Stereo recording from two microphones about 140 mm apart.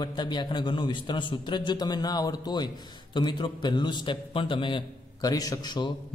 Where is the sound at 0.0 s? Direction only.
30° left (ahead or behind).